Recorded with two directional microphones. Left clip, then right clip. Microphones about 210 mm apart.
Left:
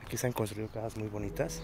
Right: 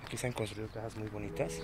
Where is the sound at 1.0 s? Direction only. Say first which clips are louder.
Left 3 dB; 30° left (ahead or behind).